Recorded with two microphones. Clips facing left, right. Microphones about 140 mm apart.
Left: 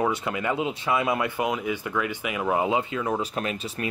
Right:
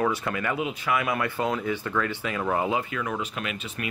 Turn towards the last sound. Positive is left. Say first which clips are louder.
# left 3 dB
turn(degrees=35)  # may be behind; listen again after turning